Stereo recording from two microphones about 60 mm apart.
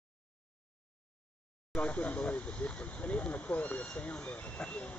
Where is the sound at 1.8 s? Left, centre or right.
Left.